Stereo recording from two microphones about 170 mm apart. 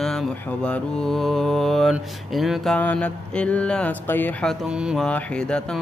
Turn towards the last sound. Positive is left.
turn(degrees=5)  # may be behind; listen again after turning